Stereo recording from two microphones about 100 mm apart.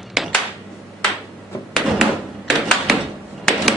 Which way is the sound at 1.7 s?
5° left (ahead or behind).